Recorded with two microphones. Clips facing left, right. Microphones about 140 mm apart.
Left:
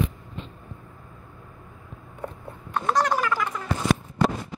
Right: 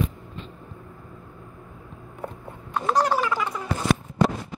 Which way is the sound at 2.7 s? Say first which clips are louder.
Right 1 dB; 5° right (ahead or behind).